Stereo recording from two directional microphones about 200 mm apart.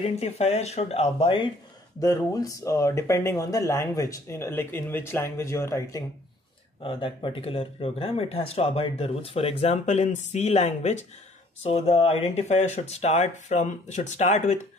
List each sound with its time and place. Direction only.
0.0 s speech: 30° left (ahead or behind); by 6.0 s 15° left (ahead or behind)
6.8 s speech: 25° left (ahead or behind)